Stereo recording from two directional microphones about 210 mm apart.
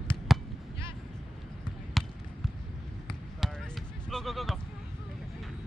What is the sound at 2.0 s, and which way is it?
Basketball bounce, centre (ahead or behind).